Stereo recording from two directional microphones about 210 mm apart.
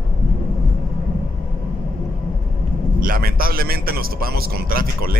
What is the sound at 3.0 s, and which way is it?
A man's voice, 45° right (ahead or behind).